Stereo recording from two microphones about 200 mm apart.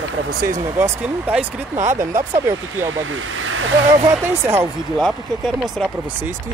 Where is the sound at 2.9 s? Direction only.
80° right.